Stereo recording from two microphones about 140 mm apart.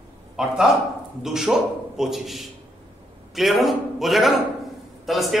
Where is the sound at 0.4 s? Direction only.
5° right (ahead or behind).